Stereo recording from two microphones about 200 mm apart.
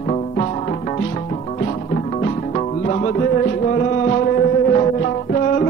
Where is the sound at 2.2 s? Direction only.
35° left (ahead or behind).